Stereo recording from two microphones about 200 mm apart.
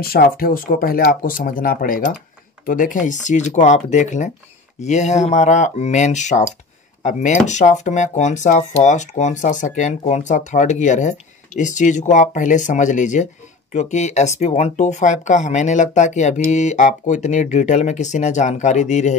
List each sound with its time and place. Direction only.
0.0 s speech: 50° left (ahead or behind)